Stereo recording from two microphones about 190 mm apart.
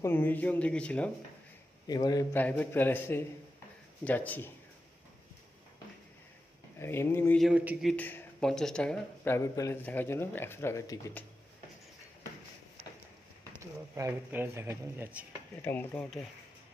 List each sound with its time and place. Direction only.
0.0 s speech: 10° left (ahead or behind)
1.9 s a man's voice: 20° left (ahead or behind)
2.3 s speech: 10° left (ahead or behind)
6.8 s speech: 10° left (ahead or behind)
7.4 s speech: centre (ahead or behind)
7.9 s speech: 10° left (ahead or behind)
13.6 s speech: 15° right (ahead or behind)
15.6 s speech: 10° left (ahead or behind)